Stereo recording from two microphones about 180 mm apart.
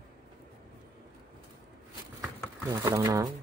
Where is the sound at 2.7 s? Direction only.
15° right (ahead or behind).